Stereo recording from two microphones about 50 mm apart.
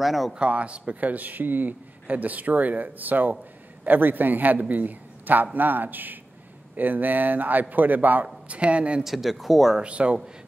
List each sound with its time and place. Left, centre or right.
0.0 s speech: centre
0.3 s speech: right
8.5 s speech: right
9.0 s speech: centre
9.8 s speech: right